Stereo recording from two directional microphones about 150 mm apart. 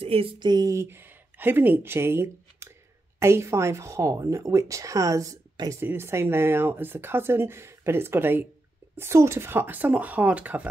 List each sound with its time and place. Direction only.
0.0 s speech: 40° right (ahead or behind); by 10.7 s 10° right (ahead or behind)